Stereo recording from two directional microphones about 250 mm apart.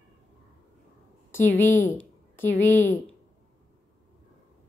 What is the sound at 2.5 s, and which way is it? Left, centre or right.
Speech, left.